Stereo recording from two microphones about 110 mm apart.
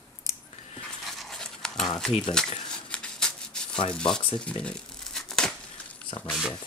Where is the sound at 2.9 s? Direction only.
5° left (ahead or behind).